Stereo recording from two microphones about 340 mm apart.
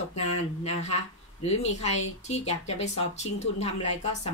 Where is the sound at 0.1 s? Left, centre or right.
Centre.